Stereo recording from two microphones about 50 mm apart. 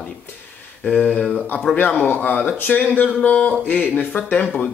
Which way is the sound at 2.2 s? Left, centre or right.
Left.